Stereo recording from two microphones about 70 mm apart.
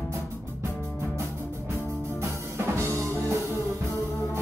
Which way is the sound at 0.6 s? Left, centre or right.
Right.